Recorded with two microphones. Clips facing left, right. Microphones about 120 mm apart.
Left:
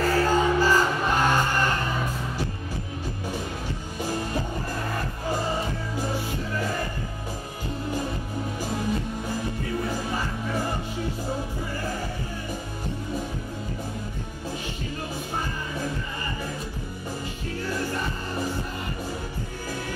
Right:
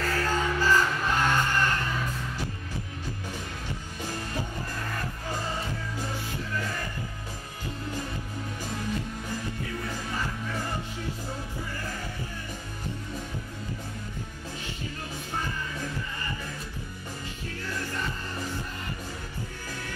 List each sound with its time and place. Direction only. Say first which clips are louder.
0.0 s music: left 6 dB; 25° left (ahead or behind)
4.0 s music: left 6 dB; 20° left (ahead or behind)
8.6 s music: left 4 dB; 25° left (ahead or behind)
15.3 s music: left 1 dB; 20° left (ahead or behind)
17.6 s music: left 5 dB; 25° left (ahead or behind)